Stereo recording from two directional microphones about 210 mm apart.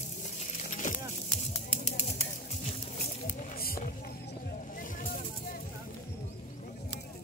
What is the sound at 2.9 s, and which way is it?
Snake, 40° left (ahead or behind).